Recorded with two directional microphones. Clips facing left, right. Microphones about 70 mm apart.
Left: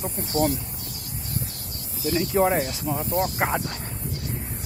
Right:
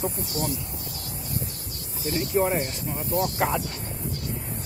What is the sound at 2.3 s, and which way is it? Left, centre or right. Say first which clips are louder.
Speech: left 2 dB; left.